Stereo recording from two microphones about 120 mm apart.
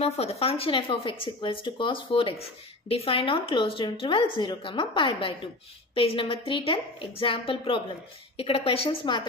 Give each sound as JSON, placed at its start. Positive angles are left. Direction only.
{"t": 0.0, "sound": "speech", "side_deg": 55}